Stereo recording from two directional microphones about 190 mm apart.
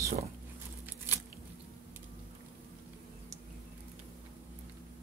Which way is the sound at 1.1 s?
10° right (ahead or behind).